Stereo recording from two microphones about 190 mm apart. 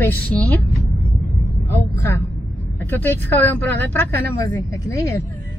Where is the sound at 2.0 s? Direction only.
10° left (ahead or behind).